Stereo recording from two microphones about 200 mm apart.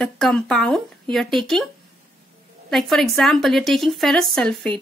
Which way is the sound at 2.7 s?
Centre (ahead or behind).